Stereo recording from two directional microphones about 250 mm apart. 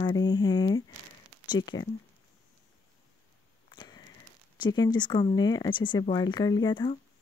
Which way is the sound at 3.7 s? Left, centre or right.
Centre.